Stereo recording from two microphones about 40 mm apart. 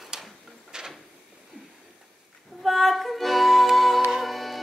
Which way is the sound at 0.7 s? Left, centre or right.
Centre.